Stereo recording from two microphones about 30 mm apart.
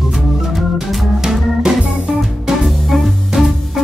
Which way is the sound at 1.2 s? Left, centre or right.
Right.